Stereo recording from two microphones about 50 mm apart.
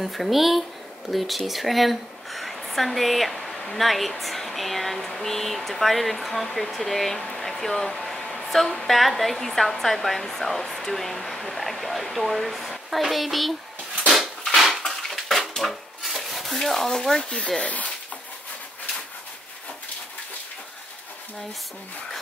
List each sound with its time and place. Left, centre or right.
0.0 s speech: centre
14.1 s dishes: centre
14.9 s bathtub: centre
17.6 s speech: left